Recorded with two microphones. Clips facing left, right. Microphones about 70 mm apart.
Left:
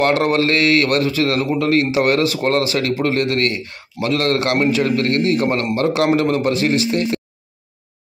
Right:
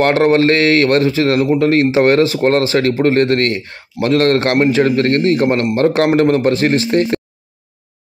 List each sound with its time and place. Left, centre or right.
0.0 s speech: right
6.1 s speech: right